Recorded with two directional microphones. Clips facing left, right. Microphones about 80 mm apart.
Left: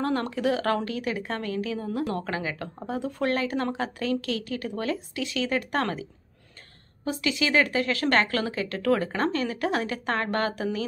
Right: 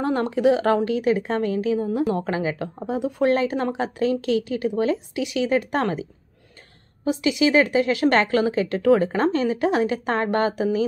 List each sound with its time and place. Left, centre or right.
0.0 s a woman's voice: right
1.9 s a woman's voice: centre
7.1 s a woman's voice: right